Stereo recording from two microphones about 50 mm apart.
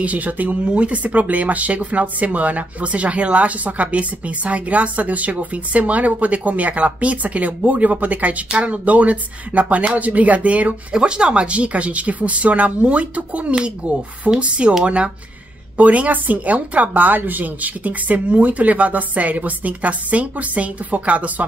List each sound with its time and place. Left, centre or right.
0.0 s speech: right
15.8 s speech: right